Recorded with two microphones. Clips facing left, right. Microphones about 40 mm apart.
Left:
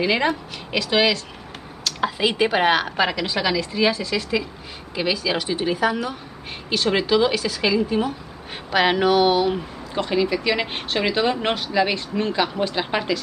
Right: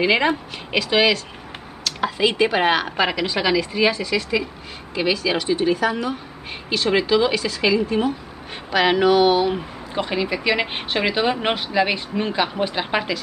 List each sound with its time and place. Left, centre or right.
0.0 s speech: centre